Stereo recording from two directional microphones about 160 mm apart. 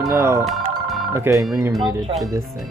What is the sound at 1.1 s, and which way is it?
Speech, 20° right (ahead or behind).